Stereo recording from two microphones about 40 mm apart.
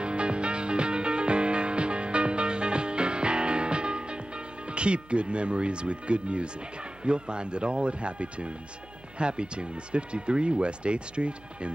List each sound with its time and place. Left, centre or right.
0.0 s music: right
4.6 s speech: right